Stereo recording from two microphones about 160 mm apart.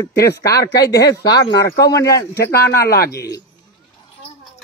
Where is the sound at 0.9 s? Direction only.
20° left (ahead or behind).